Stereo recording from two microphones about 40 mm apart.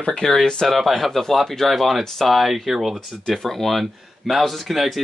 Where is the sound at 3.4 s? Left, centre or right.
Centre.